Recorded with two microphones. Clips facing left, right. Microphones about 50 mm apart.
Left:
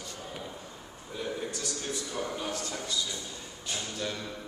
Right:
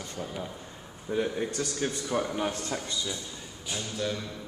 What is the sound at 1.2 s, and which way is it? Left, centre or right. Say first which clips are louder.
A man's voice: right 5 dB; right.